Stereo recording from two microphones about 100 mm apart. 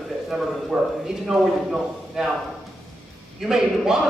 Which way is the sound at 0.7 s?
10° right (ahead or behind).